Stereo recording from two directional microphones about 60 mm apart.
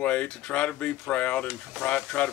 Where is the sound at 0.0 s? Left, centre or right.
Centre.